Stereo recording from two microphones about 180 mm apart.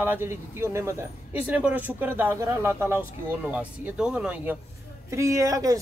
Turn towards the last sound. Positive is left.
turn(degrees=-20)  # may be behind; listen again after turning